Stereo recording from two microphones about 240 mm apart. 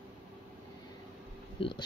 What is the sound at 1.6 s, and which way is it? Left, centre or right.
Speech, left.